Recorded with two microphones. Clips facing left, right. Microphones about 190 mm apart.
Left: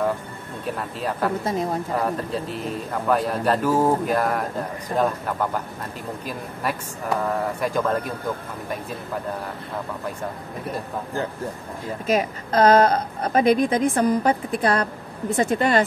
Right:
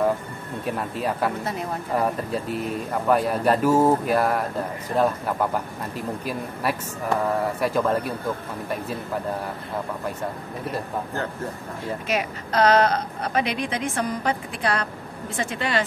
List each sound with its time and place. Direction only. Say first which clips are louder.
0.7 s speech: right 1 dB; 10° right (ahead or behind)
12.2 s a woman's voice: left 2 dB; 45° left (ahead or behind)